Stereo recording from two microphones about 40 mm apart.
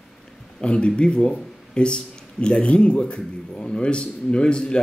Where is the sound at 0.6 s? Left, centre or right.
Left.